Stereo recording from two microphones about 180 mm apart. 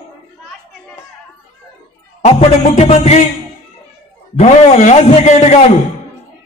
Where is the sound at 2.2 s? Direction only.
35° left (ahead or behind).